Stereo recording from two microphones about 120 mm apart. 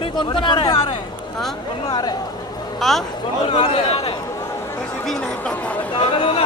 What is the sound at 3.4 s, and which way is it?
Speech, 50° left (ahead or behind).